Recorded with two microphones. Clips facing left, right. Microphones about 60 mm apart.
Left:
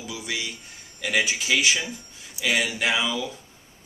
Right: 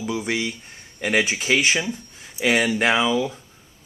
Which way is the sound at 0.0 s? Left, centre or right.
Right.